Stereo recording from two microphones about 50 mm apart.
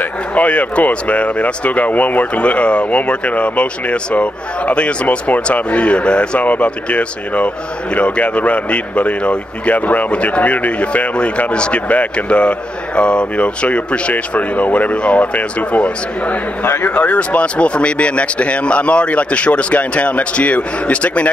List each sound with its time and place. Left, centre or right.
0.0 s speech: left
16.6 s speech: left
16.9 s speech: left